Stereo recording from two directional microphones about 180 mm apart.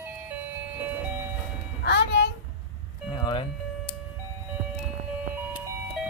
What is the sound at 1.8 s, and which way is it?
Music, 70° left (ahead or behind).